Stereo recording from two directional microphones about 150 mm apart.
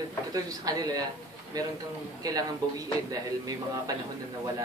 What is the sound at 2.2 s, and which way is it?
Speech, 25° right (ahead or behind).